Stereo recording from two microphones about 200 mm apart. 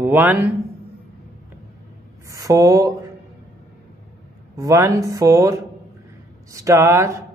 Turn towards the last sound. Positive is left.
turn(degrees=-10)  # may be behind; listen again after turning